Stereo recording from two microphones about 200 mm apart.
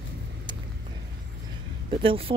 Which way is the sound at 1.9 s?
25° right (ahead or behind).